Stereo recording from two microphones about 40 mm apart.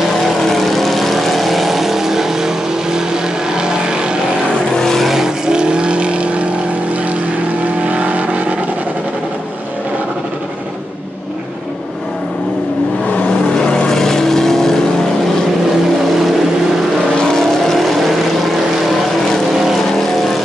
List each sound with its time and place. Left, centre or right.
0.5 s vehicle: centre; by 4.2 s right
4.7 s vehicle: centre
5.0 s vehicle: centre
5.5 s vehicle: right
7.8 s vehicle: right
13.6 s vehicle: centre
17.4 s vehicle: centre